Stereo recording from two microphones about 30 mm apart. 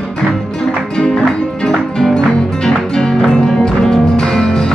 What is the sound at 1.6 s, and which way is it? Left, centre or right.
Music, centre.